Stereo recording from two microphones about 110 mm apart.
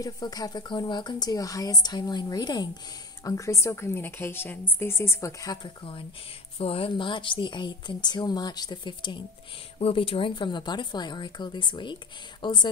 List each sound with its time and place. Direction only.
0.0 s a woman's voice: 35° left (ahead or behind)
6.6 s speech: 60° left (ahead or behind); by 9.2 s 45° left (ahead or behind)
9.8 s speech: 60° left (ahead or behind)